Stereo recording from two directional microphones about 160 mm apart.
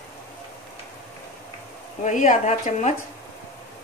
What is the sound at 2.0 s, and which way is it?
Speech, 50° left (ahead or behind).